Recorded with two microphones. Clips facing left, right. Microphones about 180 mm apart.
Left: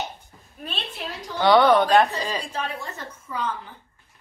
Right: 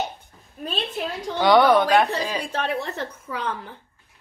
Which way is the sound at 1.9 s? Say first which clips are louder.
Even; centre (ahead or behind).